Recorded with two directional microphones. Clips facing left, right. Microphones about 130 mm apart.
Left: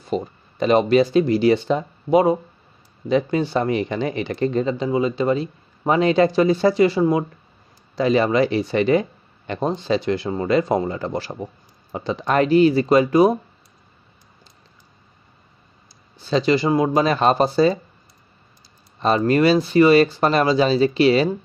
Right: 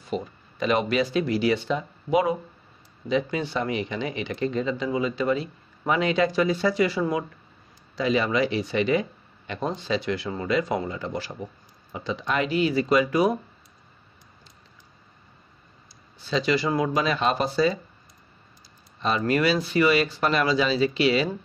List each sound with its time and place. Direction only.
0.1 s speech: 35° left (ahead or behind)
7.9 s speech: 40° left (ahead or behind)
16.3 s speech: 40° left (ahead or behind)
16.5 s speech: 25° left (ahead or behind)
18.9 s speech: 40° left (ahead or behind)